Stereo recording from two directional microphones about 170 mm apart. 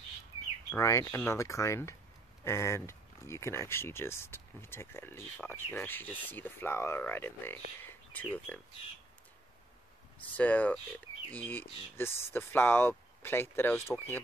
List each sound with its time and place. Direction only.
0.7 s speech: 20° left (ahead or behind)
7.8 s a sound: 10° left (ahead or behind)
10.3 s speech: 10° left (ahead or behind)